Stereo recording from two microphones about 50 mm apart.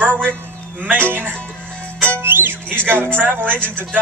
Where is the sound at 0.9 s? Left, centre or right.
Right.